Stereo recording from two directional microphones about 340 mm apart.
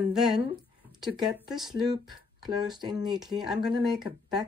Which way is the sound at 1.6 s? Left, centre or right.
Centre.